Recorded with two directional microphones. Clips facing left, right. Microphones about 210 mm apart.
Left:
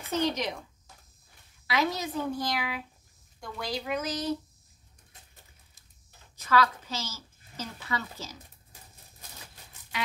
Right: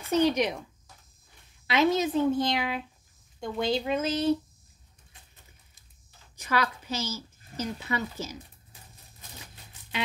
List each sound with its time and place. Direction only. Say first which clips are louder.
0.1 s speech: right 5 dB; 15° right (ahead or behind)
1.7 s a woman's voice: right 6 dB; 25° right (ahead or behind)
6.3 s a woman's voice: left 3 dB; 15° right (ahead or behind)